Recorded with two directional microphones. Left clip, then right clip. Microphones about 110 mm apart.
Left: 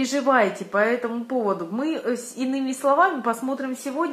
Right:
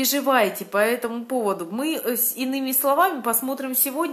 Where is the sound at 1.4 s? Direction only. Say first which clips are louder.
Left 1 dB; 30° right (ahead or behind).